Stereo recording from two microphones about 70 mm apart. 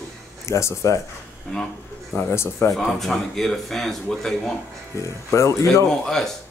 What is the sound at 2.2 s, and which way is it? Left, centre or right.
Speech, left.